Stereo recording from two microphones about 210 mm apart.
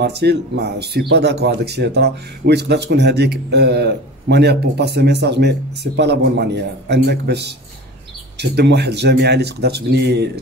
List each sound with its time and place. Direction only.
0.0 s speech: 50° right (ahead or behind)